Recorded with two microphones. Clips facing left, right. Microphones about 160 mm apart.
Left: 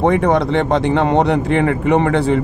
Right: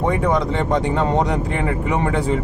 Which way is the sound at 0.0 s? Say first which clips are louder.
Left 5 dB; 70° left (ahead or behind).